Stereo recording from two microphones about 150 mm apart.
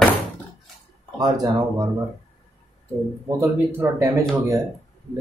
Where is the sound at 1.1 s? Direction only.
25° right (ahead or behind).